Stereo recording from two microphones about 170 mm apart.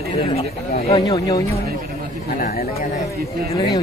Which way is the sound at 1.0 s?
20° left (ahead or behind).